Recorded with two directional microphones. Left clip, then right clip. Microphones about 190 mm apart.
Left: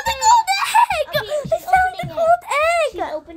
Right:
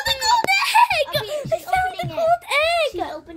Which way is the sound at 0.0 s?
5° left (ahead or behind).